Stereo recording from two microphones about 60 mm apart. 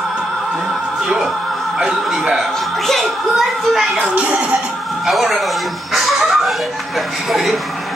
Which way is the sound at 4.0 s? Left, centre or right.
Right.